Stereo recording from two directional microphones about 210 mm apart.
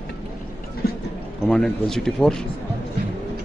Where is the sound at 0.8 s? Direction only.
45° left (ahead or behind).